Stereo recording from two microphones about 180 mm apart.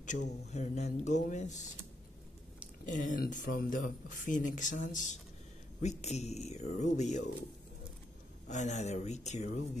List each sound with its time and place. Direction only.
0.5 s speech: 40° left (ahead or behind)
2.8 s speech: 45° left (ahead or behind)
8.5 s speech: 40° left (ahead or behind)